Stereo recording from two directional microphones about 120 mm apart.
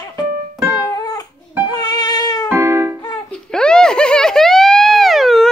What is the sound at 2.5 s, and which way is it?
Music, 20° right (ahead or behind).